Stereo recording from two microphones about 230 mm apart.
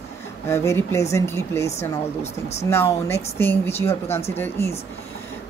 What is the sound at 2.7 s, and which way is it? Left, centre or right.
Speech, centre.